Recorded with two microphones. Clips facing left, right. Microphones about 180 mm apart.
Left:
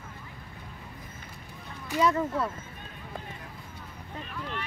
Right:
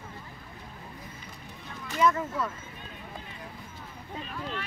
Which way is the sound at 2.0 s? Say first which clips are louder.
Even; 30° left (ahead or behind).